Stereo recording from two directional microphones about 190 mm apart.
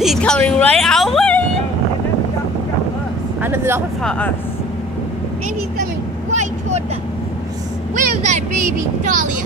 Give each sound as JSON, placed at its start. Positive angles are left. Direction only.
{"t": 0.0, "sound": "a sound", "side_deg": 0}
{"t": 3.4, "sound": "speech", "side_deg": -10}
{"t": 4.0, "sound": "speech", "side_deg": 5}
{"t": 6.3, "sound": "vehicle", "side_deg": -35}
{"t": 7.9, "sound": "vehicle", "side_deg": -45}